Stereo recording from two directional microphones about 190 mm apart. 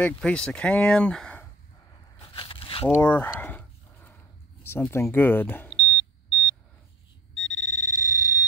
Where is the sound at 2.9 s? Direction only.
10° left (ahead or behind).